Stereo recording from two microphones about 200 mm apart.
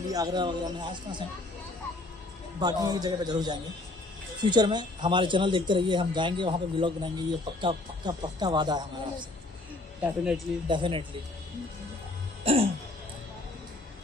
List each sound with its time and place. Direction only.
0.1 s speech: 20° right (ahead or behind)
2.6 s speech: 20° right (ahead or behind)
10.0 s speech: 5° right (ahead or behind)
10.7 s speech: 25° right (ahead or behind)
12.5 s speech: 30° right (ahead or behind)